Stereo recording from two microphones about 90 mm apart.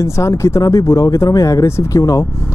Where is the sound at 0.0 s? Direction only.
35° left (ahead or behind).